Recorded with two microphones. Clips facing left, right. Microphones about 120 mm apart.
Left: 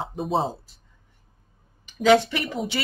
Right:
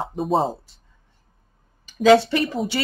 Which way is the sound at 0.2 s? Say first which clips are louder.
Right 4 dB; centre (ahead or behind).